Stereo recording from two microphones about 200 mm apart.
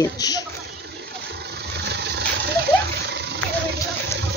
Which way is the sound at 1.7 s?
60° right (ahead or behind).